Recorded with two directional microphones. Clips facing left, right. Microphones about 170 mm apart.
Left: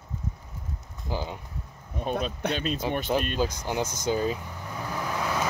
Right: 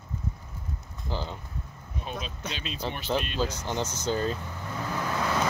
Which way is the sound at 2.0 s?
50° left (ahead or behind).